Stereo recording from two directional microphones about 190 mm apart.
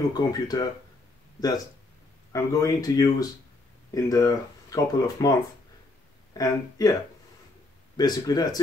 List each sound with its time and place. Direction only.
0.1 s speech: 20° left (ahead or behind)
2.3 s speech: 20° left (ahead or behind)
6.3 s speech: 20° left (ahead or behind)
8.0 s speech: 20° left (ahead or behind)